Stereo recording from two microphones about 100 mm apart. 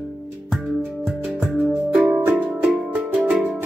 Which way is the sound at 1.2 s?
20° right (ahead or behind).